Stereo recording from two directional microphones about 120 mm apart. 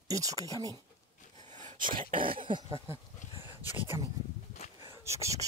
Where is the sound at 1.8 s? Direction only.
45° right (ahead or behind).